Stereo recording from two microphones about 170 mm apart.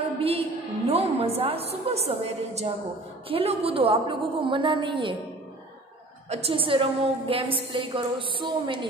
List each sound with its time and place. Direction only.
0.2 s a woman's voice: 35° right (ahead or behind)
6.3 s a woman's voice: 35° right (ahead or behind)